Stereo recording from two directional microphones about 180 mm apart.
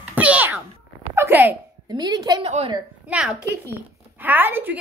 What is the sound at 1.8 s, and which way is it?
Speech, 25° right (ahead or behind).